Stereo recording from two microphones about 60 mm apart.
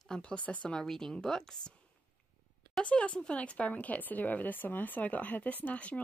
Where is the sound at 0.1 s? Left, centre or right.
Centre.